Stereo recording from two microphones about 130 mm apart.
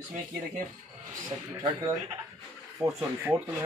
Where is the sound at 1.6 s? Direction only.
30° right (ahead or behind).